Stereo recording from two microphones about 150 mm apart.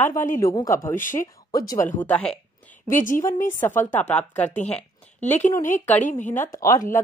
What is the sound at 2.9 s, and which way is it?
Speech, 60° left (ahead or behind).